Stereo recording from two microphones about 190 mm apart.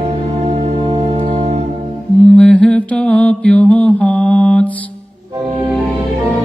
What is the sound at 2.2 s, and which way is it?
Mantra, 5° left (ahead or behind).